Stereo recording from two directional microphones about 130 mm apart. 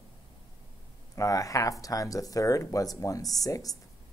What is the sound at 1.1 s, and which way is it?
Speech, 25° left (ahead or behind).